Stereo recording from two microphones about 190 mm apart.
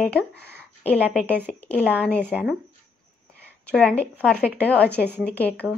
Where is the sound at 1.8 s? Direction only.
5° right (ahead or behind).